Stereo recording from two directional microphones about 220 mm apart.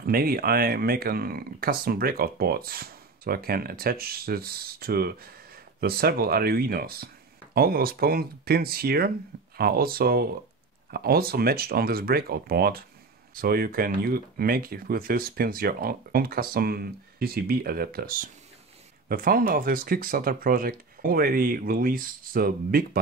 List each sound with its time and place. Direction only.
0.0 s speech: 45° right (ahead or behind)